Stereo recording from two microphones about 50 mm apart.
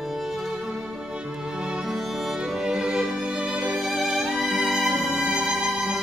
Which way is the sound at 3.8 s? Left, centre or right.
Centre.